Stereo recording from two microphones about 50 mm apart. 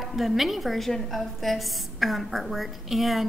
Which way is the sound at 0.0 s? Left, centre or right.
Centre.